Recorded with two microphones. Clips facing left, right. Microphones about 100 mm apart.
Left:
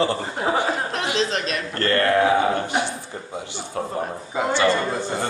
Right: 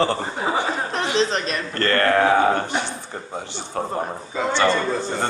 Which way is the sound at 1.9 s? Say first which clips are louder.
Even; 45° right (ahead or behind).